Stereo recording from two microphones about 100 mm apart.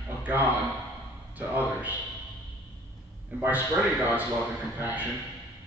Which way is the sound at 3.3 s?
15° right (ahead or behind).